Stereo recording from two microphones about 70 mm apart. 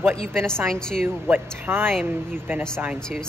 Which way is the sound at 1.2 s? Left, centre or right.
Right.